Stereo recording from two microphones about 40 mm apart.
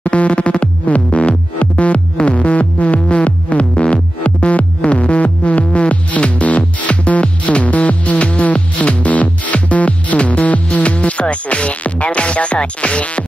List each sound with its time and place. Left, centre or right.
0.0 s music: left